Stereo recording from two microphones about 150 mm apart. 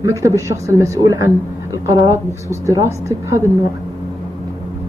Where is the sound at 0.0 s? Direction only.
20° right (ahead or behind).